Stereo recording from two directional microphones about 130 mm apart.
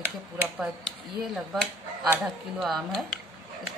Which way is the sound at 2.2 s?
Centre (ahead or behind).